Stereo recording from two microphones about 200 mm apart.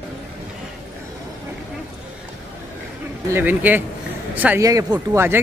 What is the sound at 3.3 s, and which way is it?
Speech, 10° right (ahead or behind).